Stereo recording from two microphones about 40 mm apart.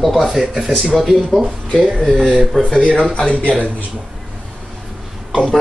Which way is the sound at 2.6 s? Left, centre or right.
Left.